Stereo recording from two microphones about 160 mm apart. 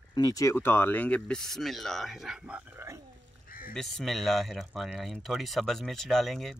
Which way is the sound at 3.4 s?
60° left (ahead or behind).